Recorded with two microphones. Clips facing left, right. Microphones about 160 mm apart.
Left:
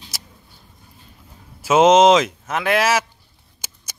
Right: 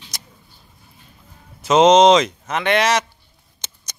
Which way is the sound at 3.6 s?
5° left (ahead or behind).